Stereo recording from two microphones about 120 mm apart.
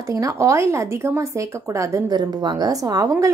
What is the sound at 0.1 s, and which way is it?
Speech, 25° right (ahead or behind).